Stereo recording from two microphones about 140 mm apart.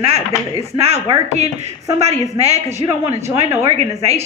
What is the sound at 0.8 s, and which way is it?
Speech, 50° right (ahead or behind).